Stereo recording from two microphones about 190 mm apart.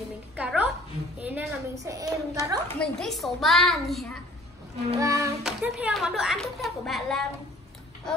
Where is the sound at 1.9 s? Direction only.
20° right (ahead or behind).